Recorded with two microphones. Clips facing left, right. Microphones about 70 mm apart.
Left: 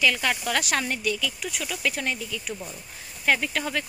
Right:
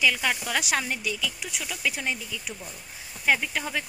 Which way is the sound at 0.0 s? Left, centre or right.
Centre.